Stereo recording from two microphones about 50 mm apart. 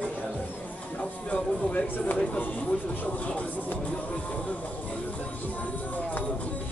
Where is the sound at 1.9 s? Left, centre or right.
Left.